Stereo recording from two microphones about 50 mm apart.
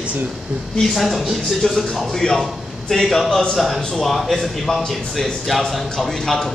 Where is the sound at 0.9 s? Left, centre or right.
Centre.